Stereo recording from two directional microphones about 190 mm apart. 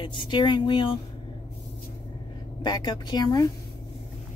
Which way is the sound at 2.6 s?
20° left (ahead or behind).